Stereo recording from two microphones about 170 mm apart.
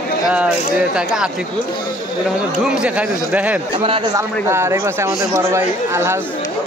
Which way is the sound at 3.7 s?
30° right (ahead or behind).